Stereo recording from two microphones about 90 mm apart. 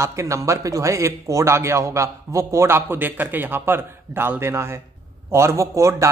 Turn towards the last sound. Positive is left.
turn(degrees=-35)  # may be behind; listen again after turning